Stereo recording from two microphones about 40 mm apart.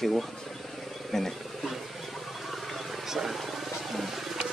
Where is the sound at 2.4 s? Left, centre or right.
Centre.